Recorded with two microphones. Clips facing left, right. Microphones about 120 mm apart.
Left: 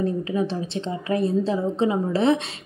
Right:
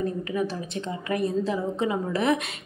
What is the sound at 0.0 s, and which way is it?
A woman's voice, 25° left (ahead or behind).